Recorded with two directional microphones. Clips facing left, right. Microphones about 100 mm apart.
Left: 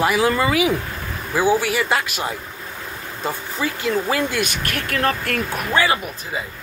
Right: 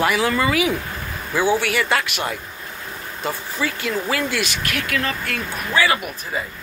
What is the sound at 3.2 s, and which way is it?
Speech, 25° left (ahead or behind).